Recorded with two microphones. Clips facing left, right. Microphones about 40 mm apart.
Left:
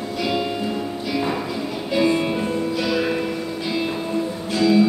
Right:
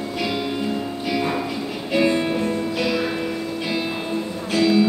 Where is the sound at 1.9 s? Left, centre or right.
Right.